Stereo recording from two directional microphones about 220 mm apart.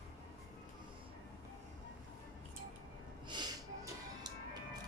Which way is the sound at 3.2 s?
20° right (ahead or behind).